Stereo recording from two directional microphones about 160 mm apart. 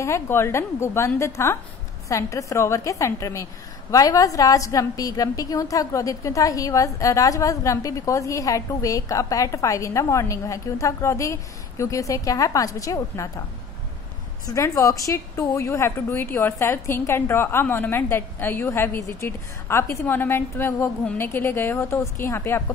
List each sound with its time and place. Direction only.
0.0 s a woman's voice: 15° left (ahead or behind)
14.4 s a woman's voice: 20° left (ahead or behind)